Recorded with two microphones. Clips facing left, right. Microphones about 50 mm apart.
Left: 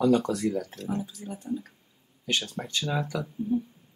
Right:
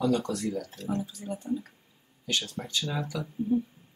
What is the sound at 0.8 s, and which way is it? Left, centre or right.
Speech, centre.